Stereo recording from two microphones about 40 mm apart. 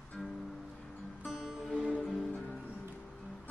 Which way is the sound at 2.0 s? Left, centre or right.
Centre.